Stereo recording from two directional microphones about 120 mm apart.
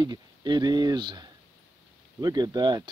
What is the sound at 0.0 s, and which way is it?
Speech, 35° right (ahead or behind).